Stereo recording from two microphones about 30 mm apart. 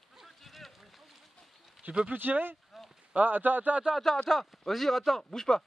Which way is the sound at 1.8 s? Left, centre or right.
Right.